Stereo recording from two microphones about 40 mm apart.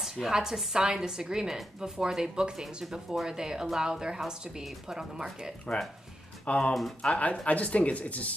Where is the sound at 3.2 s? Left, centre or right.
Centre.